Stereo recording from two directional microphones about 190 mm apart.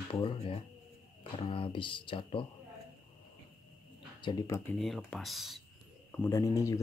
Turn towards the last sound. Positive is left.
turn(degrees=15)  # may be behind; listen again after turning